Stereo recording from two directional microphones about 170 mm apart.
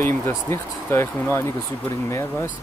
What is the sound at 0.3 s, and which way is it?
Speech, 15° left (ahead or behind).